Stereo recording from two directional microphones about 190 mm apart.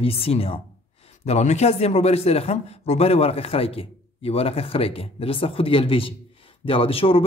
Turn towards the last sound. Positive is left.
turn(degrees=30)  # may be behind; listen again after turning